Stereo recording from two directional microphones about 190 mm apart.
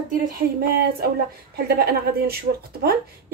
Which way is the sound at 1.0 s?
55° right (ahead or behind).